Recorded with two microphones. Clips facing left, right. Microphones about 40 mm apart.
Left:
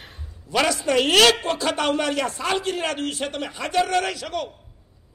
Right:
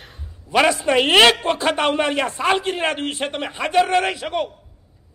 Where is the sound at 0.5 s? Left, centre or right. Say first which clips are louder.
Right 4 dB; right.